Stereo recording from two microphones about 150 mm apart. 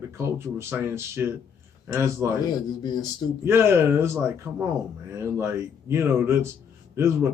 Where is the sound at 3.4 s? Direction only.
15° right (ahead or behind).